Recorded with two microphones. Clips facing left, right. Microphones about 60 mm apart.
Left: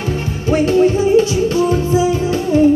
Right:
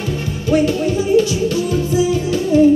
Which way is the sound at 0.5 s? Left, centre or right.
Left.